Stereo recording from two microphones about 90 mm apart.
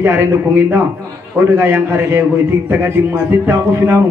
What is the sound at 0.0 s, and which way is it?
A man's voice, 25° right (ahead or behind).